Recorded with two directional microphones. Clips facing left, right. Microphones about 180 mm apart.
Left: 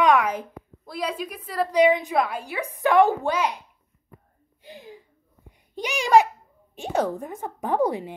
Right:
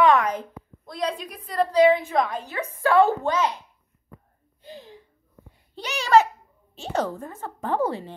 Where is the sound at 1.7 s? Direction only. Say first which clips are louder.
Right 1 dB; 15° left (ahead or behind).